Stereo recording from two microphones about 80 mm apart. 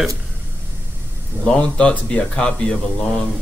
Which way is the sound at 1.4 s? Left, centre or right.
Centre.